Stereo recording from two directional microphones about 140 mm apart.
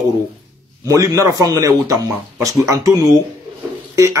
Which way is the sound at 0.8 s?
25° right (ahead or behind).